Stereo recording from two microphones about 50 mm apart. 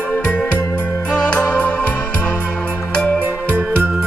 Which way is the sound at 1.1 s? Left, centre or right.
Centre.